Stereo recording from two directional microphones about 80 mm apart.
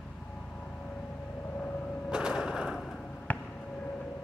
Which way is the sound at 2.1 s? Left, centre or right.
Centre.